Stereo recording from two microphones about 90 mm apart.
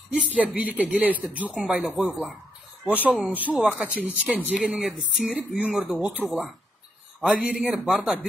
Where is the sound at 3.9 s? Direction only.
20° right (ahead or behind).